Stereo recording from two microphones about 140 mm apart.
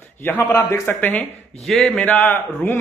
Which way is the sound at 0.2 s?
15° left (ahead or behind).